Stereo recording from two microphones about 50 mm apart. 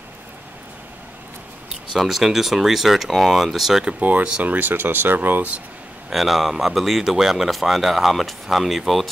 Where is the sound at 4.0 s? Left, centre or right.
Right.